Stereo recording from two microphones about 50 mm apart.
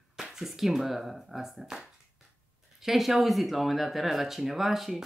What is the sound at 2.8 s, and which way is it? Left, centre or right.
Speech, centre.